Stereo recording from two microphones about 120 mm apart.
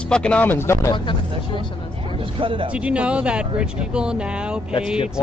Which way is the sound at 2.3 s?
45° right (ahead or behind).